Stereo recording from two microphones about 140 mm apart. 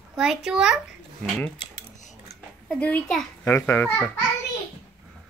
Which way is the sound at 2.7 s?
10° left (ahead or behind).